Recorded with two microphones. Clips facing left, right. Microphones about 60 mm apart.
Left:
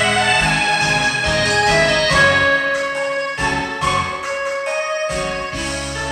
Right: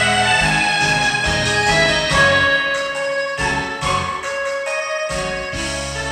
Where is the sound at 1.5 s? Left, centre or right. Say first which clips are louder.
Left 1 dB; left.